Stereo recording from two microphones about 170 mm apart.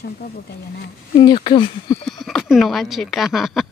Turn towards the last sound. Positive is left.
turn(degrees=0)  # may be behind; listen again after turning